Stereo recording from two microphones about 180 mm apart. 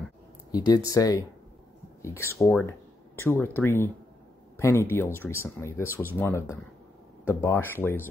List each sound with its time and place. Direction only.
0.5 s speech: 20° left (ahead or behind)